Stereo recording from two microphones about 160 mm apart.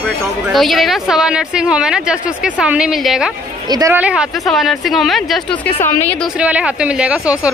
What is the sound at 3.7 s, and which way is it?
Speech, 20° right (ahead or behind).